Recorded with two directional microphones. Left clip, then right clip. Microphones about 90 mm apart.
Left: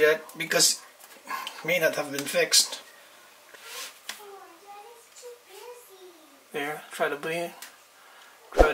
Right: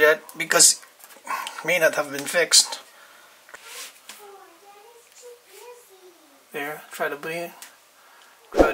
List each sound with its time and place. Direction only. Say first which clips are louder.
0.0 s speech: right 4 dB; 35° right (ahead or behind)
6.5 s speech: right 1 dB; centre (ahead or behind)
8.5 s a sound: right 2 dB; centre (ahead or behind)